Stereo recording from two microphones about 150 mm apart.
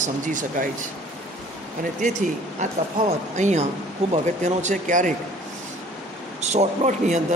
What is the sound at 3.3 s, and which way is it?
A man's voice, 50° right (ahead or behind).